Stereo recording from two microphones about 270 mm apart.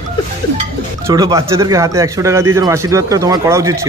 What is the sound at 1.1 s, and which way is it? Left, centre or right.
A man's voice, centre.